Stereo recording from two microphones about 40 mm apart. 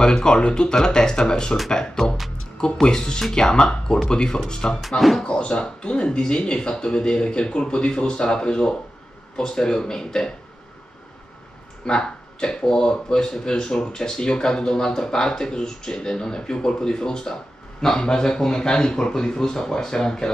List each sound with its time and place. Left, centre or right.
0.0 s speech: centre
4.8 s speech: centre
5.2 s speech: left
11.8 s speech: left